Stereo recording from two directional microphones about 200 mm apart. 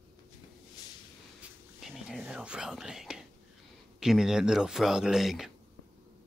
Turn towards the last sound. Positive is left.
turn(degrees=0)  # may be behind; listen again after turning